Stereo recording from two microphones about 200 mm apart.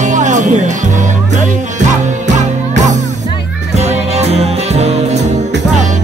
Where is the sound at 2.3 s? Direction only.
35° right (ahead or behind).